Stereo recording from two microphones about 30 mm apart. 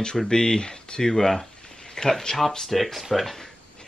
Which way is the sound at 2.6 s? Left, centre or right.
Centre.